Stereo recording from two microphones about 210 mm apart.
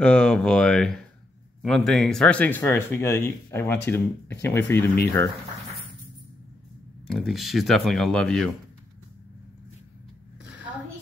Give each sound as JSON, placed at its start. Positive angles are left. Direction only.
{"t": 0.0, "sound": "speech", "side_deg": 5}
{"t": 7.1, "sound": "speech", "side_deg": 0}